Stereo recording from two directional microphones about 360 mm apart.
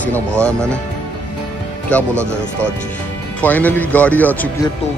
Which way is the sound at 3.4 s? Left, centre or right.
Centre.